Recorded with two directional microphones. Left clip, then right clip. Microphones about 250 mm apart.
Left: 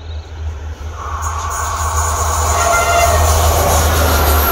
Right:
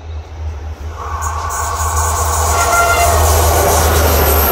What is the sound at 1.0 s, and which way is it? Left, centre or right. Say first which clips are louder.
Train: right 1 dB; right.